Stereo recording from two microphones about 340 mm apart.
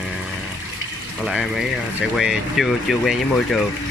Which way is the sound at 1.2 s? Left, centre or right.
Centre.